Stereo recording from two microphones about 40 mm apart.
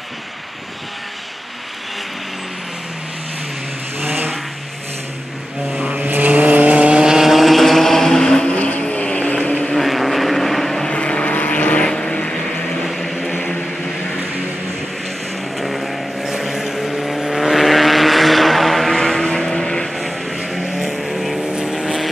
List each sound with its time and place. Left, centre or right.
4.0 s vehicle: right
5.9 s vehicle: right
7.1 s vehicle: centre
8.5 s vehicle: left
9.8 s vehicle: centre
10.9 s vehicle: left
11.9 s vehicle: left
12.8 s vehicle: centre
13.3 s vehicle: left
15.5 s vehicle: centre
18.9 s vehicle: centre
20.0 s vehicle: centre
21.5 s vehicle: centre
21.7 s vehicle: centre